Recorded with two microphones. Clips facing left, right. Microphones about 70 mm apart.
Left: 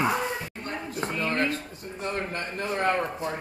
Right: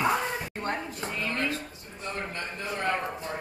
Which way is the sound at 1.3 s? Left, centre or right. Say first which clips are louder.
Left 3 dB; left.